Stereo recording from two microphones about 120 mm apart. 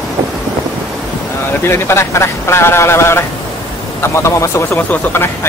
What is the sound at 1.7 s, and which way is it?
Speech, 20° left (ahead or behind).